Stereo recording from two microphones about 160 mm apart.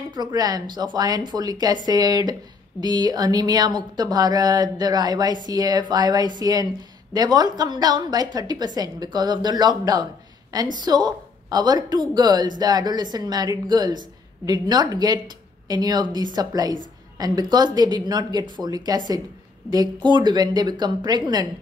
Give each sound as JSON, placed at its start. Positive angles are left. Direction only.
{"t": 0.1, "sound": "speech", "side_deg": -25}